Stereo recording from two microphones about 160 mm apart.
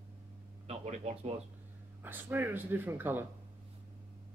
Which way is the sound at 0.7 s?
45° right (ahead or behind).